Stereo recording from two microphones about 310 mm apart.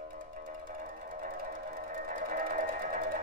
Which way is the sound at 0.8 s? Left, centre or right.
Right.